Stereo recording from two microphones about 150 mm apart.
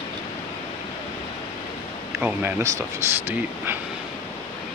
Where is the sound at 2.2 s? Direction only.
15° right (ahead or behind).